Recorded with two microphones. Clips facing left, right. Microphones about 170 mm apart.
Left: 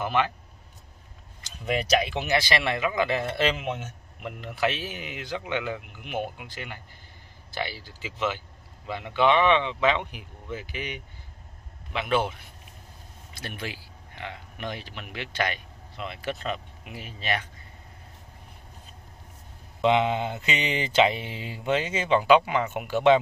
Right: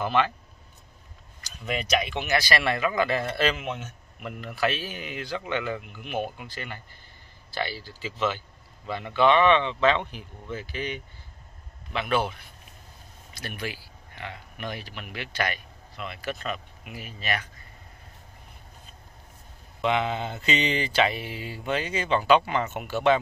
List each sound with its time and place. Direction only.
0.0 s mantra: 15° left (ahead or behind)
1.4 s speech: 30° left (ahead or behind)
6.3 s mantra: 15° left (ahead or behind)
13.3 s speech: 25° left (ahead or behind)
19.8 s mantra: 20° left (ahead or behind)